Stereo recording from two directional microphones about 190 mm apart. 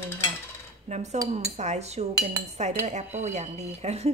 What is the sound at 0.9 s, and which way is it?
A woman's voice, 35° right (ahead or behind).